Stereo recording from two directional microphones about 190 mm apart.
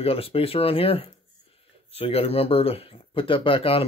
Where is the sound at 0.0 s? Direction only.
30° left (ahead or behind).